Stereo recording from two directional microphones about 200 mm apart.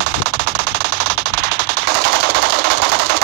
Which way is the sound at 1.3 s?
50° right (ahead or behind).